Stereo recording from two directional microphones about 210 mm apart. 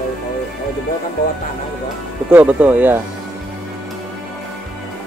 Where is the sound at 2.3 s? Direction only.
5° right (ahead or behind).